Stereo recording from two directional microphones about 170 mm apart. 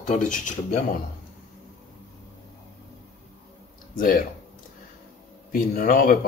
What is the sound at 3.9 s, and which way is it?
Speech, 55° left (ahead or behind).